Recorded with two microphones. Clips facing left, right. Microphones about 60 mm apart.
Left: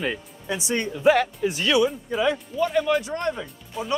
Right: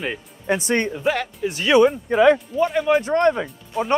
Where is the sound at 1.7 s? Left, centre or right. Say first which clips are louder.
Right 11 dB; right.